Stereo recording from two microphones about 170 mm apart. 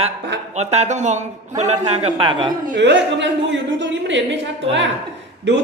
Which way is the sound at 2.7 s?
90° right.